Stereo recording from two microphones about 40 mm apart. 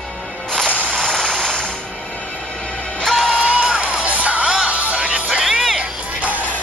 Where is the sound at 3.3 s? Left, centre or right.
Right.